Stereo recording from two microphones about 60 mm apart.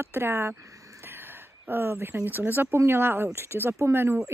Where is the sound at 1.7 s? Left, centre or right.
Right.